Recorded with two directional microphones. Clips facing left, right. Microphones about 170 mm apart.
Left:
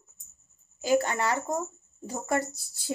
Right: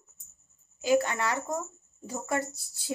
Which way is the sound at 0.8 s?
35° left (ahead or behind).